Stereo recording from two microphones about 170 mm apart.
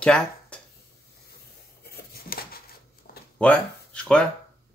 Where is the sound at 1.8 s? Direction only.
65° left (ahead or behind).